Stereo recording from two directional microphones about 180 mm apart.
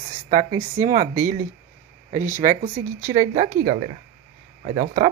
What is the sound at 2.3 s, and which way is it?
Speech, 50° right (ahead or behind).